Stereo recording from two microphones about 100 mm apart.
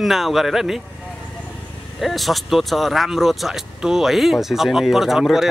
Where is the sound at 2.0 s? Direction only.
Centre (ahead or behind).